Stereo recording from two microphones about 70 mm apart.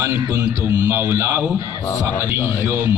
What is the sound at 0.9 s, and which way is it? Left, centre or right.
Speech, right.